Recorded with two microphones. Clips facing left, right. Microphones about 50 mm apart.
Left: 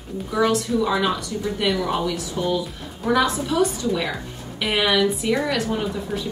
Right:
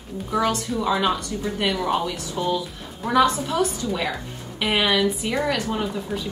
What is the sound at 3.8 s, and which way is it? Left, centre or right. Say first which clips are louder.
A woman's voice: left 2 dB; centre.